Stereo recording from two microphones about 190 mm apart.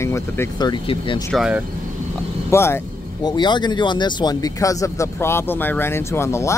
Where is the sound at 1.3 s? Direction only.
5° right (ahead or behind).